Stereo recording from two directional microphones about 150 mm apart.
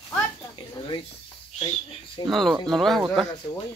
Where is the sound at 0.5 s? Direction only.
30° left (ahead or behind).